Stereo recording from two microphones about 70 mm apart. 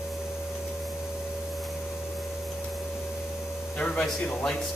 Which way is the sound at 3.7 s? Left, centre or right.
Centre.